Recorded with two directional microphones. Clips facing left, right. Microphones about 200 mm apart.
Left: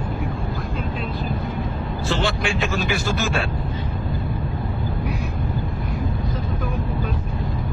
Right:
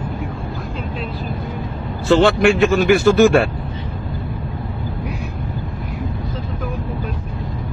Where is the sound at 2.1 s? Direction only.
55° right (ahead or behind).